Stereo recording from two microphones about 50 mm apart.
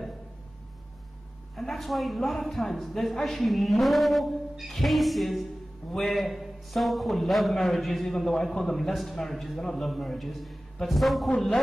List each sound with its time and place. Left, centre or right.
1.5 s a man's voice: centre